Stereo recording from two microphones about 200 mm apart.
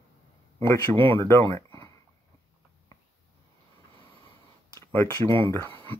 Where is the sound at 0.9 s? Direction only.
25° right (ahead or behind).